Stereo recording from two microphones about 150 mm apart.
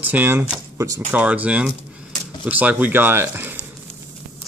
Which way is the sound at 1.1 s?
10° right (ahead or behind).